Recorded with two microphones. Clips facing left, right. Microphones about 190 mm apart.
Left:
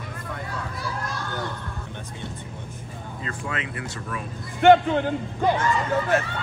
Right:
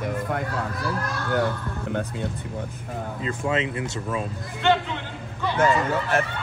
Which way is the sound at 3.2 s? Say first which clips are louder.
Right 7 dB; 25° right (ahead or behind).